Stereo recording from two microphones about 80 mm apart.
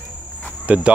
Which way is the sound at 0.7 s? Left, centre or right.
Centre.